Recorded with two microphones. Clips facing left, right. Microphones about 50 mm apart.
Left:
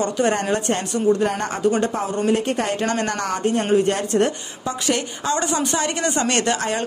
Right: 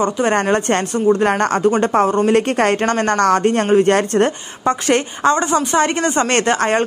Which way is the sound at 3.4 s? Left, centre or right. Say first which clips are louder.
Right 5 dB; right.